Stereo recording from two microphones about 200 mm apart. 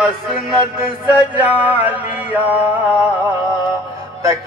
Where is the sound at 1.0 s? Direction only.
10° right (ahead or behind).